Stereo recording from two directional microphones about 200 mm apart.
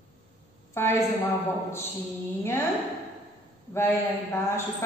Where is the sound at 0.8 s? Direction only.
10° left (ahead or behind).